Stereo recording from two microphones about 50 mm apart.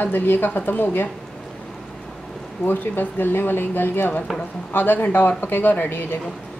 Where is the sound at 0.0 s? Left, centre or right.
Left.